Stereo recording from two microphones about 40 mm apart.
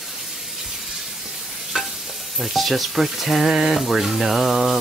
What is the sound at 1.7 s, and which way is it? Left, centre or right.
Stir, centre.